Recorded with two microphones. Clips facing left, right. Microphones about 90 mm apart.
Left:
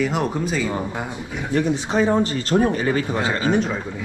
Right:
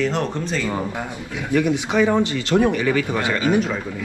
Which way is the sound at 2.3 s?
90° right.